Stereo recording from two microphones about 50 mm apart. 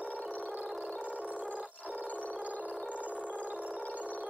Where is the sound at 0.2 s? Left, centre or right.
Left.